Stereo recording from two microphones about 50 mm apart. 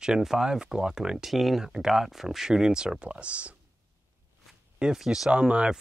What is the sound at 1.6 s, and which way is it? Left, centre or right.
Speech, centre.